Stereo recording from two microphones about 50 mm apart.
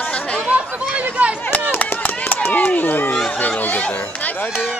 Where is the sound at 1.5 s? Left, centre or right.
Left.